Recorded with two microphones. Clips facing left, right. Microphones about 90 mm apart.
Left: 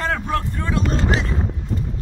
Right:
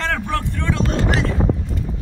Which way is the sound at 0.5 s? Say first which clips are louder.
Even; 20° left (ahead or behind).